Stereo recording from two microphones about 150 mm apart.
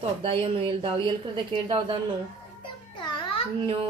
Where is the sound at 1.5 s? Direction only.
30° right (ahead or behind).